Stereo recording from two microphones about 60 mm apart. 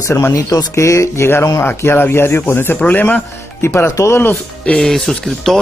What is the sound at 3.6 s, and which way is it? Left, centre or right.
Speech, left.